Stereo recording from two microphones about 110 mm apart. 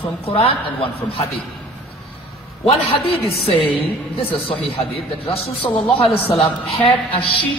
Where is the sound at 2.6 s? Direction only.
65° left (ahead or behind).